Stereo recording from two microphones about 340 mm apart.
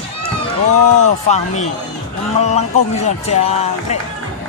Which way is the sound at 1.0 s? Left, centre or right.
Centre.